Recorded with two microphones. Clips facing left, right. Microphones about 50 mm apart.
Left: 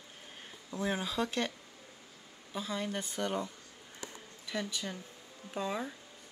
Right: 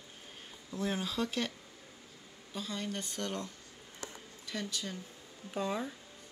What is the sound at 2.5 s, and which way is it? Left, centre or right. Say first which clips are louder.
Speech: left 2 dB; centre.